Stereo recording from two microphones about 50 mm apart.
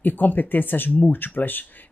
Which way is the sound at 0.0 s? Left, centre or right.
Left.